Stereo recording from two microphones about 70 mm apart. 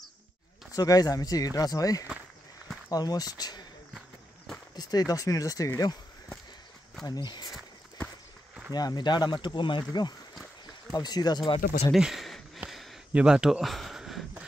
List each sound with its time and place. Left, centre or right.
0.7 s speech: left
4.7 s speech: left
7.1 s speech: left
8.7 s speech: left
10.9 s speech: left
11.9 s speech: centre
12.6 s a sound: centre